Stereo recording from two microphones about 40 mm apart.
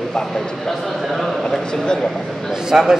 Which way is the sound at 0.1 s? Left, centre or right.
Centre.